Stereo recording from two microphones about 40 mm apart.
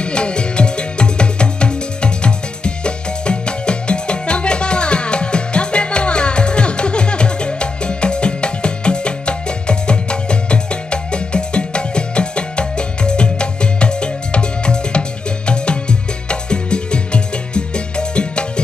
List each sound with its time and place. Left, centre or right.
0.0 s music: left